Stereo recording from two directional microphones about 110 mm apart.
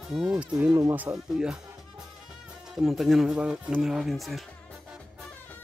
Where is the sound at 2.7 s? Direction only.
Centre (ahead or behind).